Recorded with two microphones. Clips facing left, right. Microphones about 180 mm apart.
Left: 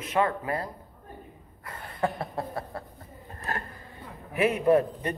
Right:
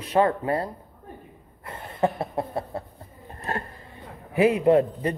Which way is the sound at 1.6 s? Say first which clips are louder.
Right 5 dB; 25° right (ahead or behind).